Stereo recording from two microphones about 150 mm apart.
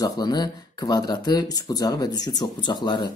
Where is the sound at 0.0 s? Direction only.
25° left (ahead or behind).